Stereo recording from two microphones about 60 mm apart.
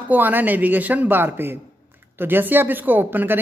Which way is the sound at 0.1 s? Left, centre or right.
Right.